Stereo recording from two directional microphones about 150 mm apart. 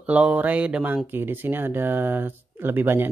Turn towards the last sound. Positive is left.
turn(degrees=-15)  # may be behind; listen again after turning